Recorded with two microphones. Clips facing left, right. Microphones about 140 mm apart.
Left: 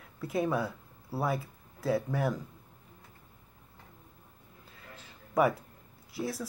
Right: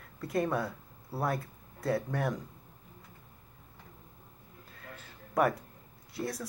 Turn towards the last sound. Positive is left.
turn(degrees=0)  # may be behind; listen again after turning